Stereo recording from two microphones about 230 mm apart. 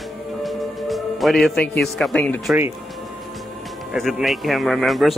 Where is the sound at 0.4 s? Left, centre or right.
Centre.